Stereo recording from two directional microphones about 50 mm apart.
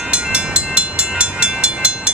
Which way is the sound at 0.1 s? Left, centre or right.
Right.